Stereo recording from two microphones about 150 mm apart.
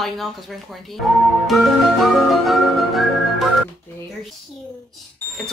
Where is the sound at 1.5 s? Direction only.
Centre (ahead or behind).